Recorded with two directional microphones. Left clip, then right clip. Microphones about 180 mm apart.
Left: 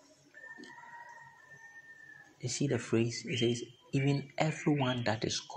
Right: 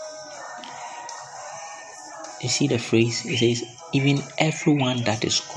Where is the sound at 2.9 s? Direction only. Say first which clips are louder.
Right 11 dB; 5° right (ahead or behind).